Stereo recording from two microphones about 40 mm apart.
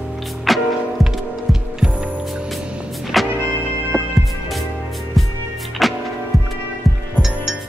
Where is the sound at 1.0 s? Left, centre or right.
Centre.